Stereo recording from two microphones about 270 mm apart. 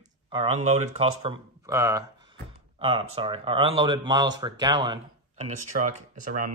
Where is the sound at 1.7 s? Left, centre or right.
Centre.